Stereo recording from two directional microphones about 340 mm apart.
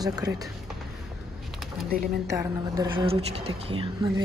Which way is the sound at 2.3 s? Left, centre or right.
Centre.